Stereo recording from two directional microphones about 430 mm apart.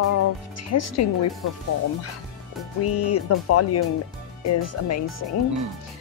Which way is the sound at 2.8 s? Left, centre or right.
Left.